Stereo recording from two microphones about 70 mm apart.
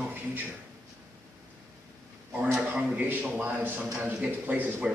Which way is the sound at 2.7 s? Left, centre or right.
Right.